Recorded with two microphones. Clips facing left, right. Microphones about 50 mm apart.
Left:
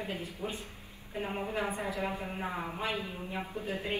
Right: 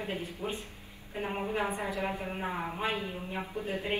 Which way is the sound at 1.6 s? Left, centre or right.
Right.